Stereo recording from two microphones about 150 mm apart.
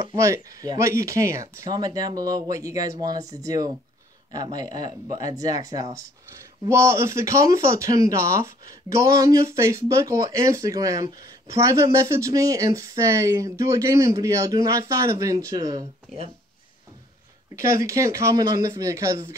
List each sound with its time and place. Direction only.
0.0 s speech: 20° right (ahead or behind)
17.6 s speech: 20° right (ahead or behind)